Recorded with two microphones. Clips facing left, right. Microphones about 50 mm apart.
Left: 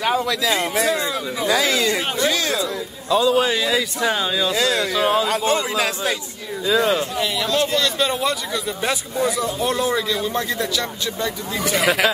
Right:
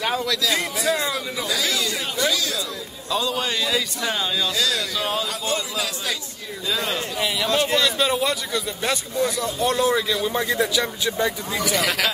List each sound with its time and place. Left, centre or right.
0.0 s speech: centre
1.4 s speech: left
3.1 s speech: centre
4.6 s speech: left
4.9 s speech: centre
5.3 s speech: left
6.7 s speech: centre
7.5 s a man's voice: centre
11.7 s speech: centre